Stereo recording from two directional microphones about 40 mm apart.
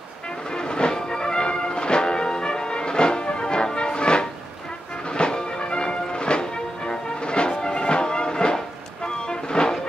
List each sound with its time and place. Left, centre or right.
0.5 s music: left